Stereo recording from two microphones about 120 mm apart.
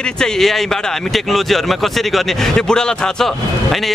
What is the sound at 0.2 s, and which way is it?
Speech, centre (ahead or behind).